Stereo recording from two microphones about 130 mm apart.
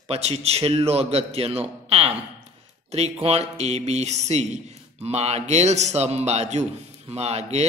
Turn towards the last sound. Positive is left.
turn(degrees=-55)  # may be behind; listen again after turning